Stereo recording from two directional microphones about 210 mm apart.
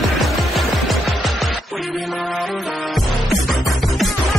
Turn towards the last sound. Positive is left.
turn(degrees=0)  # may be behind; listen again after turning